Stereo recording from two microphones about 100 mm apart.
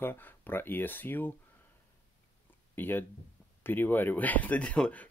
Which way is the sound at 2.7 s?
20° left (ahead or behind).